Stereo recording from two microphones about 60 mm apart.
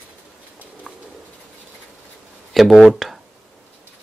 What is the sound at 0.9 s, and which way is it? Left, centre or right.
Bird, centre.